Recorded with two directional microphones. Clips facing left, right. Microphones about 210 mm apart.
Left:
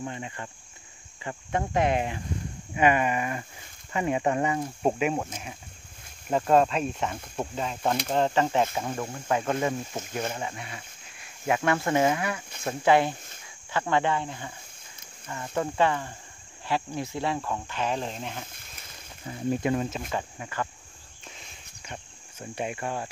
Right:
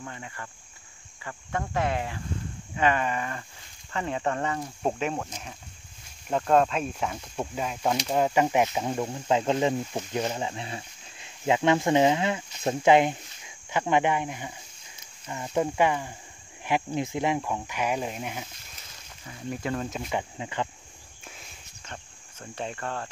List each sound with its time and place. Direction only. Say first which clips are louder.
0.0 s speech: left 5 dB; 20° left (ahead or behind); by 18.4 s 10° right (ahead or behind)
19.2 s speech: left 6 dB; 25° left (ahead or behind)
20.1 s speech: right 2 dB; 15° right (ahead or behind)
21.2 s walk: even; 5° right (ahead or behind)
21.8 s insect: left 2 dB; 10° left (ahead or behind)